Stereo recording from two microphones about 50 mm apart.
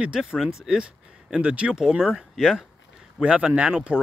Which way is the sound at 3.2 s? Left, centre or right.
Right.